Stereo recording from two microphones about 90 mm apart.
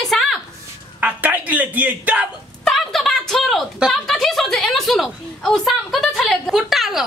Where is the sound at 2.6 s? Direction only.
5° left (ahead or behind).